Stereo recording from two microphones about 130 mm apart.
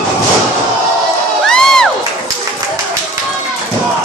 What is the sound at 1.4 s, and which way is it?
Crowd, 5° left (ahead or behind).